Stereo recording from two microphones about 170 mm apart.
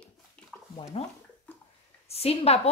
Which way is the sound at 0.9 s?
35° left (ahead or behind).